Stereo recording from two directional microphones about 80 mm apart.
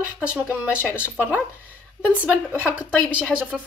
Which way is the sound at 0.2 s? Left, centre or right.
Centre.